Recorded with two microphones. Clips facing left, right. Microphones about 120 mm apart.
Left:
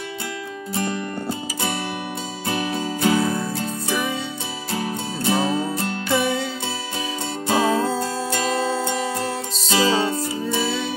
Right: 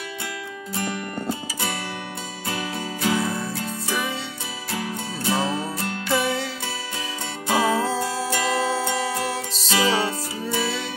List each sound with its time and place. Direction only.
2.4 s music: 25° left (ahead or behind)
4.7 s music: 25° left (ahead or behind)
7.4 s music: 25° left (ahead or behind)
9.7 s music: 30° left (ahead or behind)